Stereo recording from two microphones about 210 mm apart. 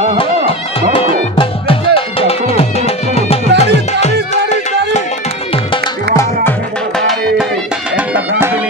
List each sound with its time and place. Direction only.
0.9 s music: 25° left (ahead or behind)
7.0 s music: centre (ahead or behind)